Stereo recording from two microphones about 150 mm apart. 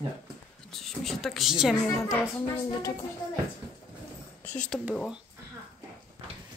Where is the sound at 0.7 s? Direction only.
Centre (ahead or behind).